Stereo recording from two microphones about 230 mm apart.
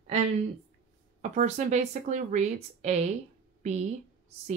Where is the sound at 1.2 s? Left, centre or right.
Right.